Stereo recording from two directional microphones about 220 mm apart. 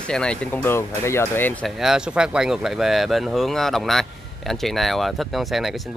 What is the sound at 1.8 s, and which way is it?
Speech, 5° right (ahead or behind).